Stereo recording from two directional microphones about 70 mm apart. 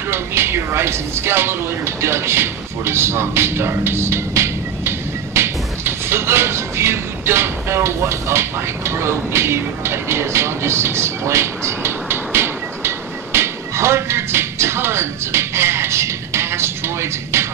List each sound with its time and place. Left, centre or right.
0.1 s speech: right